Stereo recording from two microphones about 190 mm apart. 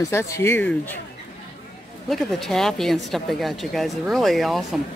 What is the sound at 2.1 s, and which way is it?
Speech, centre (ahead or behind).